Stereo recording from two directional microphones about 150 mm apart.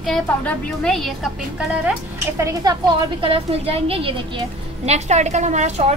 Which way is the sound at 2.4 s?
20° right (ahead or behind).